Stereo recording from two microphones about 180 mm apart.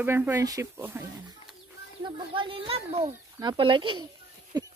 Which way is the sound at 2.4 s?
30° right (ahead or behind).